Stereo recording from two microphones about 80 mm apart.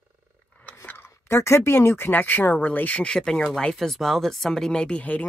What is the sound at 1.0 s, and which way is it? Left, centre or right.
Speech, left.